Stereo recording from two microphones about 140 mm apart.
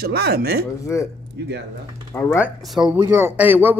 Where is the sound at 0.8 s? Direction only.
20° left (ahead or behind).